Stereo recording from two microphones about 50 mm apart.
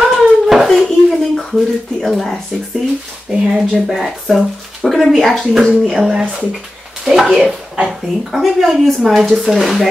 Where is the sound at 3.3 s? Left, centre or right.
Centre.